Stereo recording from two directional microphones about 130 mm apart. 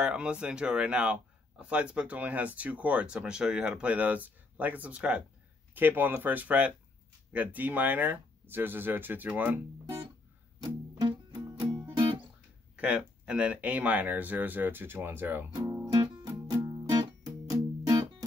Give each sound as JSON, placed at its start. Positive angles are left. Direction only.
{"t": 0.0, "sound": "speech", "side_deg": -5}
{"t": 10.6, "sound": "music", "side_deg": -30}
{"t": 12.7, "sound": "speech", "side_deg": -10}
{"t": 15.5, "sound": "music", "side_deg": -25}